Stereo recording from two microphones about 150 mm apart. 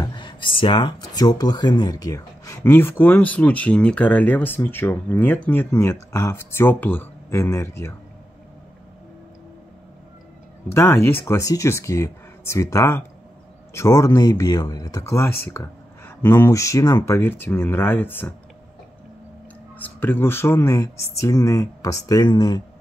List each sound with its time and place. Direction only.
0.0 s speech: 30° left (ahead or behind)
10.7 s speech: 15° left (ahead or behind)
19.8 s speech: 15° left (ahead or behind); by 22.6 s 30° left (ahead or behind)